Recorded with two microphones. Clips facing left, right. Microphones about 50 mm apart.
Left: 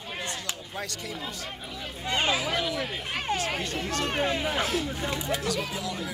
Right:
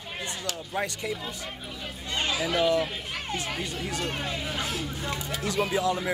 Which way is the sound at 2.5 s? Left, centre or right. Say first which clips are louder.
Right 5 dB; centre.